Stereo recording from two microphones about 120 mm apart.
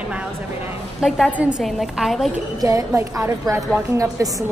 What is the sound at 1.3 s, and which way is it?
Speech, 10° right (ahead or behind).